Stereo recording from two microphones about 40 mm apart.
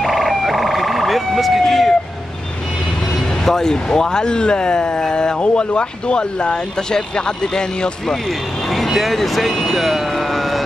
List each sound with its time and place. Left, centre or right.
0.0 s emergency vehicle: centre
3.4 s speech: centre
8.7 s speech: centre